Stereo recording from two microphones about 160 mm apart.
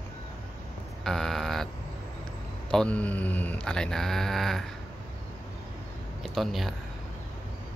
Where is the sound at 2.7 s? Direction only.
5° left (ahead or behind).